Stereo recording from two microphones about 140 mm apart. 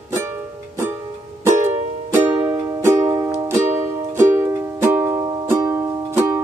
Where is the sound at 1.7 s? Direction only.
15° right (ahead or behind).